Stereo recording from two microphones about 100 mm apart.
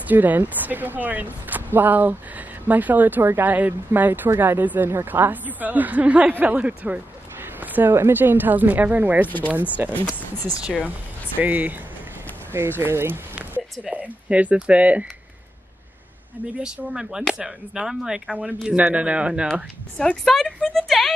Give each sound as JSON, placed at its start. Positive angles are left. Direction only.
{"t": 0.1, "sound": "speech", "side_deg": -15}
{"t": 11.3, "sound": "speech", "side_deg": -15}
{"t": 16.6, "sound": "speech", "side_deg": -5}
{"t": 20.0, "sound": "speech", "side_deg": 5}